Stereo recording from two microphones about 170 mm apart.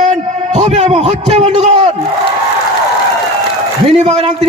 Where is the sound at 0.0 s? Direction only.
40° right (ahead or behind).